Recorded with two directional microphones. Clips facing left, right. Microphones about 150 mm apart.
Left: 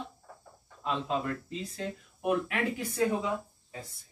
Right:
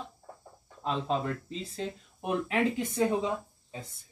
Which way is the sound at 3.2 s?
25° right (ahead or behind).